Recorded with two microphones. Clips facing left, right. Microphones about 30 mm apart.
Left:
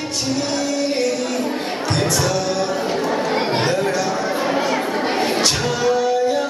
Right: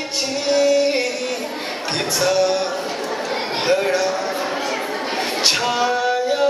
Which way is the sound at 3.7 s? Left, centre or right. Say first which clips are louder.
Right 2 dB; centre.